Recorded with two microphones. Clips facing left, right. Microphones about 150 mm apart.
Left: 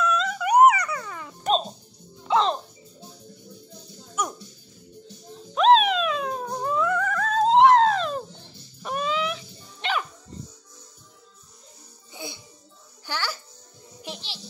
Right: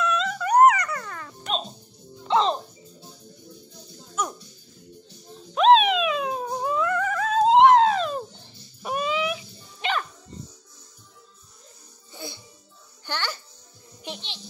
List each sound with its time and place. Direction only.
0.0 s a sound: centre (ahead or behind)
0.5 s dog: 10° left (ahead or behind)
1.4 s music: 40° left (ahead or behind)
2.2 s music: centre (ahead or behind)
4.1 s a sound: 10° left (ahead or behind)
5.5 s music: centre (ahead or behind)
8.8 s dog: 10° right (ahead or behind)
12.1 s music: 15° left (ahead or behind)
14.0 s a sound: 5° left (ahead or behind)